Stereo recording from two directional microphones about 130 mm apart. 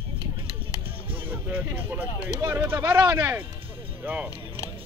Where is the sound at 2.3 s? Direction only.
20° right (ahead or behind).